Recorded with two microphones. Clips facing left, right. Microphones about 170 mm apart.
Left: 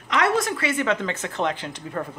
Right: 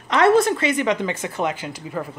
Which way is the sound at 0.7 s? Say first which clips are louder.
Right 3 dB; 15° right (ahead or behind).